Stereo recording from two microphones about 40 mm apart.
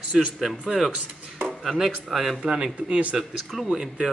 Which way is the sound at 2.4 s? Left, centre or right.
Centre.